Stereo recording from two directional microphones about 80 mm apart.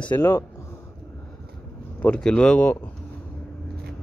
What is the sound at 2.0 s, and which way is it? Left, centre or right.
Speech, centre.